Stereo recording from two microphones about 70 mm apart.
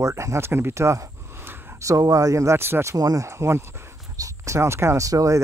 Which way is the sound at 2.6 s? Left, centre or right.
Right.